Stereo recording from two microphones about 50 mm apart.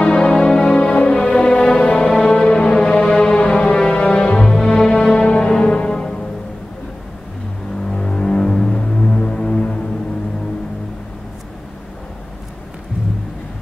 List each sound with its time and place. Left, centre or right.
0.0 s music: centre
7.9 s music: centre